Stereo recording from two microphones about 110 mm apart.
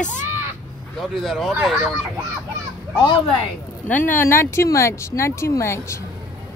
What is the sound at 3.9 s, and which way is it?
Speech, 20° left (ahead or behind).